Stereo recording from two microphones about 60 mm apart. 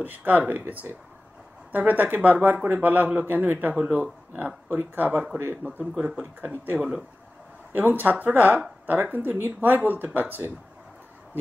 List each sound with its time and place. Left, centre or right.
0.0 s a man's voice: right
6.8 s speech: centre
7.7 s speech: right